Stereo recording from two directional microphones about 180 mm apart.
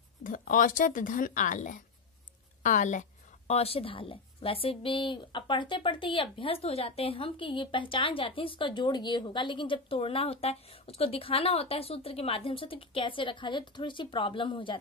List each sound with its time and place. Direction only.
0.2 s a woman's voice: 50° left (ahead or behind); by 14.8 s 25° left (ahead or behind)